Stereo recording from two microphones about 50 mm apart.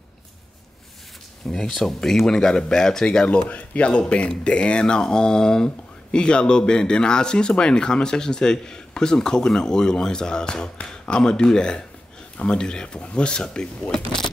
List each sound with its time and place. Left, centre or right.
1.5 s speech: centre
3.3 s speech: left